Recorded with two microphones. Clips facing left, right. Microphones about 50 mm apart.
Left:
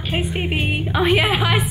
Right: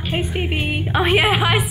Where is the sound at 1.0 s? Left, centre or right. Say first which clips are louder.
Right 1 dB; centre.